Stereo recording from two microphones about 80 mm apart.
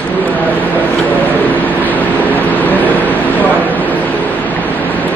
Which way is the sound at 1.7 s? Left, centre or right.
Left.